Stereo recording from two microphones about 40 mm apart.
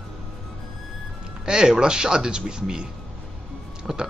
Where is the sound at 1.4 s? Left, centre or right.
Centre.